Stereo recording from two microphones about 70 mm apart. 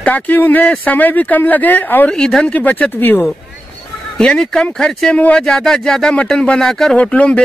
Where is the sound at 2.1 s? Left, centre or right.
Centre; by 3.2 s left.